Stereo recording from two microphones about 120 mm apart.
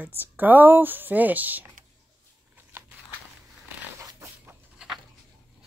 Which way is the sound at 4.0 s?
25° right (ahead or behind).